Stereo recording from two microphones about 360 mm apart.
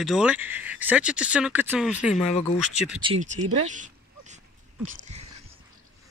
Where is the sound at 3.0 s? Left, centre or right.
Centre.